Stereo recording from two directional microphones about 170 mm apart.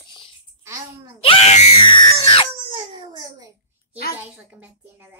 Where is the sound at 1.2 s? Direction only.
40° left (ahead or behind).